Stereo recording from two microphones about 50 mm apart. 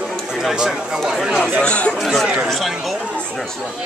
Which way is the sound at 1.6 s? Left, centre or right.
Left.